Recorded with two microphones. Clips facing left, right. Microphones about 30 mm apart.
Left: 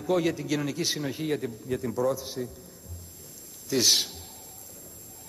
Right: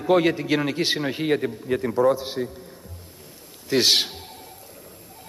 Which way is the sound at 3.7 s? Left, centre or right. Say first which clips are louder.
Right 5 dB; right.